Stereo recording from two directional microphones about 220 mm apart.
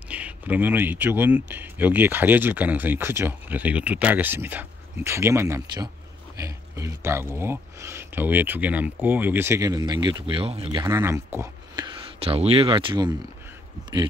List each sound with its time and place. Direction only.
0.1 s speech: 5° right (ahead or behind)